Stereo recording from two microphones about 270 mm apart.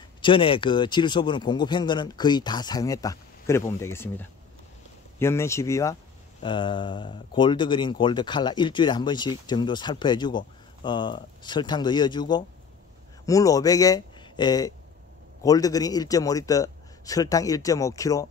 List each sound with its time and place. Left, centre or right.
0.2 s speech: centre